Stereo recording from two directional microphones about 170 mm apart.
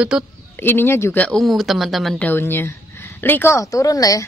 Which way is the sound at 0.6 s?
15° left (ahead or behind).